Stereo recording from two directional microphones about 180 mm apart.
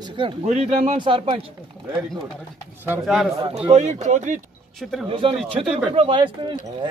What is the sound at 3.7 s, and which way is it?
Speech, 40° right (ahead or behind).